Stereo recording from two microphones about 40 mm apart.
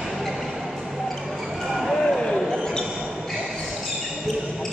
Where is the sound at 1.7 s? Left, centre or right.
Centre.